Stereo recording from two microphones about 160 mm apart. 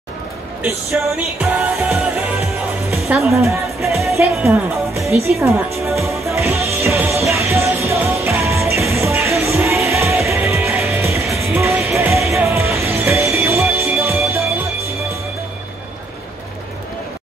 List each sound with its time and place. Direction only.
0.8 s music: centre (ahead or behind)
3.0 s speech: centre (ahead or behind)
4.1 s speech: 15° right (ahead or behind)
6.2 s music: 15° right (ahead or behind)